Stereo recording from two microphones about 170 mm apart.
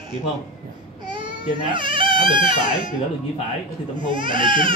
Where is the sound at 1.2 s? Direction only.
30° right (ahead or behind).